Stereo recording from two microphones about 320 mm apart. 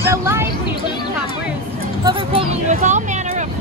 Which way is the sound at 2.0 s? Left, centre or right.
Centre.